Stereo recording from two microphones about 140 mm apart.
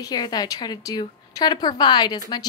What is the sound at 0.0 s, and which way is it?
A woman's voice, 30° left (ahead or behind).